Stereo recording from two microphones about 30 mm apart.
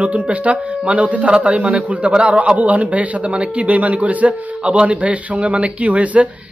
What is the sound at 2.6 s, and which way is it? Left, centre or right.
A man's voice, right.